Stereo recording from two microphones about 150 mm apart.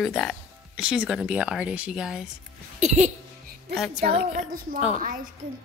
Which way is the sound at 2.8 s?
50° right (ahead or behind).